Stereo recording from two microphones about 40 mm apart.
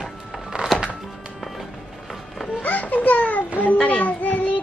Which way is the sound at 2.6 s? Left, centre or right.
Left.